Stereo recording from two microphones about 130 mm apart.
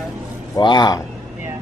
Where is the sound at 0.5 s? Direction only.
35° left (ahead or behind).